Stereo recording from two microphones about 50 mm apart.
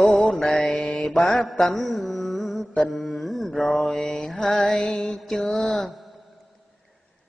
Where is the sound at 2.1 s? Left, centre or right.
Centre.